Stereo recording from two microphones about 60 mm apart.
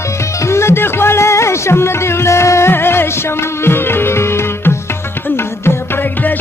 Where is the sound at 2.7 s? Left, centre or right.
Left.